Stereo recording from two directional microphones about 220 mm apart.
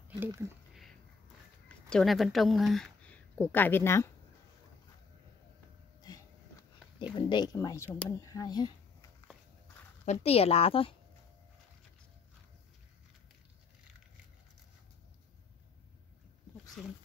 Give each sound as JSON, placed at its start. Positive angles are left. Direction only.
{"t": 0.2, "sound": "speech", "side_deg": -10}
{"t": 1.9, "sound": "speech", "side_deg": 0}
{"t": 5.9, "sound": "a sound", "side_deg": 15}
{"t": 7.2, "sound": "speech", "side_deg": 20}
{"t": 10.0, "sound": "a woman's voice", "side_deg": 30}
{"t": 16.8, "sound": "speech", "side_deg": 0}